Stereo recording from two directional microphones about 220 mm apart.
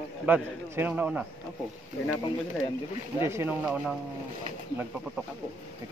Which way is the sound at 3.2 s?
10° right (ahead or behind).